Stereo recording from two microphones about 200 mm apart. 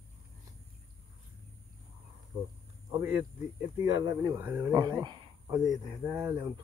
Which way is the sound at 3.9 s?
20° right (ahead or behind).